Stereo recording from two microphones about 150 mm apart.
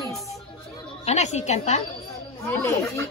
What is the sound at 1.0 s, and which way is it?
Speech, 50° left (ahead or behind).